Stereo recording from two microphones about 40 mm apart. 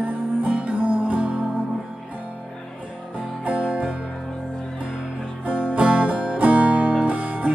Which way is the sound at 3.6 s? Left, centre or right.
Right.